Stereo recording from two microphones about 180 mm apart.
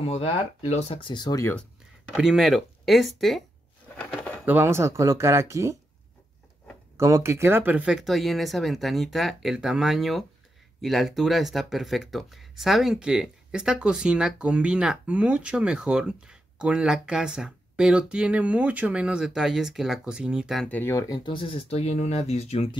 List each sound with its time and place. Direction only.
0.0 s speech: 35° left (ahead or behind)
1.5 s speech: 5° left (ahead or behind); by 5.8 s 15° right (ahead or behind)
7.0 s speech: 15° right (ahead or behind); by 21.2 s 15° left (ahead or behind)
21.3 s speech: 30° left (ahead or behind)